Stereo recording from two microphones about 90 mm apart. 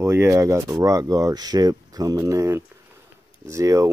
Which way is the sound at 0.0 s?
30° right (ahead or behind).